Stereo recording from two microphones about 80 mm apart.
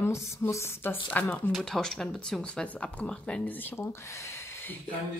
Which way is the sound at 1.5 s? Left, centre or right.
Centre.